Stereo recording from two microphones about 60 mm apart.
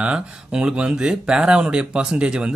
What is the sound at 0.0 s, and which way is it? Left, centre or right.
Speech, centre.